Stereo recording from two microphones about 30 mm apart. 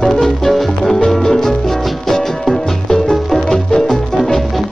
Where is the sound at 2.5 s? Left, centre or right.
Centre.